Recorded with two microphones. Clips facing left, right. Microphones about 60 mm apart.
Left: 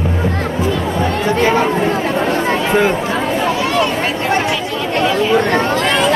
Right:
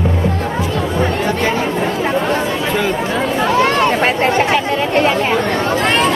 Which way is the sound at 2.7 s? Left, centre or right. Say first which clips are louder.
Left 3 dB; left.